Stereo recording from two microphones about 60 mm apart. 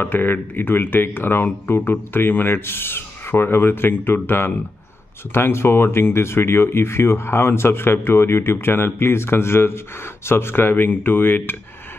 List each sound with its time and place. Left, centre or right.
0.0 s speech: left